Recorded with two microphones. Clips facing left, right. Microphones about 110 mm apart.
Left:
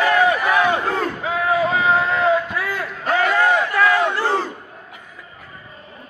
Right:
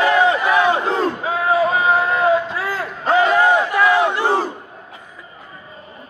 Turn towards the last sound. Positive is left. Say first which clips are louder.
# right 2 dB
turn(degrees=-15)  # may be behind; listen again after turning